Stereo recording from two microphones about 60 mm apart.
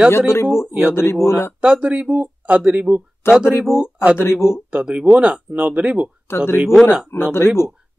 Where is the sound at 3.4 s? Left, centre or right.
Left.